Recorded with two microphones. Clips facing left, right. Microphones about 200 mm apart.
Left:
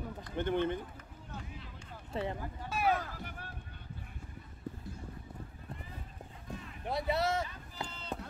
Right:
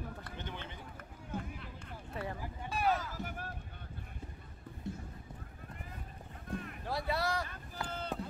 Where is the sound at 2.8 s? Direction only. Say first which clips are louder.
Left 1 dB; 55° left (ahead or behind).